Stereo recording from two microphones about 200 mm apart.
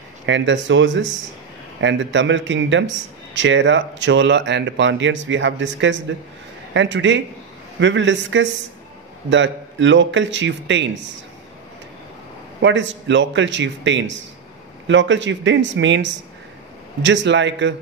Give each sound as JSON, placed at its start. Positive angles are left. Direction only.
{"t": 0.3, "sound": "speech", "side_deg": -65}
{"t": 12.6, "sound": "speech", "side_deg": -65}